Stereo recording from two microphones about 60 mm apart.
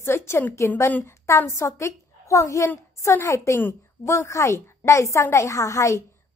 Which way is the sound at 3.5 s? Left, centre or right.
Left.